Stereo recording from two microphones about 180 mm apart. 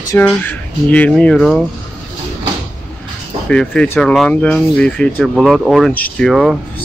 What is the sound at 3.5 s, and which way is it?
Speech, 5° left (ahead or behind).